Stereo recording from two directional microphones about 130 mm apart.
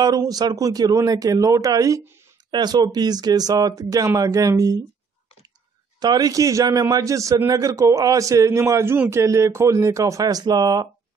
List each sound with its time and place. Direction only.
0.0 s a man's voice: 30° right (ahead or behind)
5.9 s a man's voice: 30° right (ahead or behind)